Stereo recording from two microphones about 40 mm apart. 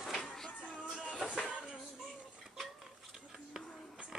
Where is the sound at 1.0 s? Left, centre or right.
Left.